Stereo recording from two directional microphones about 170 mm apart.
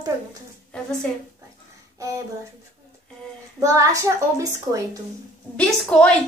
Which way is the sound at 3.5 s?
20° right (ahead or behind).